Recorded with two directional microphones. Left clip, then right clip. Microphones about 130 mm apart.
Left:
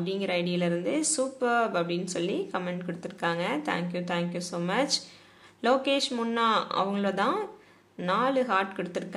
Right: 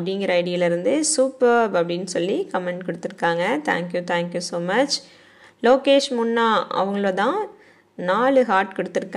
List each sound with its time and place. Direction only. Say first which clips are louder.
0.0 s speech: right 8 dB; 50° right (ahead or behind)